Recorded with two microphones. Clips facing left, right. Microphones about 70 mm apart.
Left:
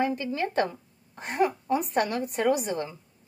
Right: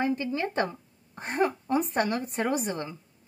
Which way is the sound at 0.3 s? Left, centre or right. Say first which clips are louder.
Left 2 dB; right.